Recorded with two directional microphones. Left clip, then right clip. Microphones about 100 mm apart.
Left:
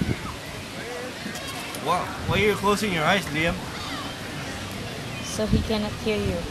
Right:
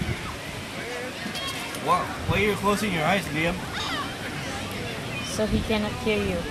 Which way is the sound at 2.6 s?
20° left (ahead or behind).